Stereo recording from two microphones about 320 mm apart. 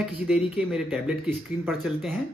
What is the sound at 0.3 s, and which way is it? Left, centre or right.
Speech, centre.